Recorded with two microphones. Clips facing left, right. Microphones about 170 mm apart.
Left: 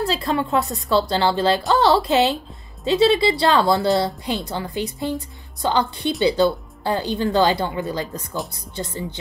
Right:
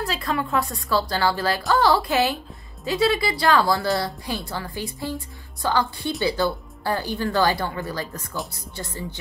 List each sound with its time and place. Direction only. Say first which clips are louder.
0.0 s a woman's voice: left 4 dB; 25° left (ahead or behind)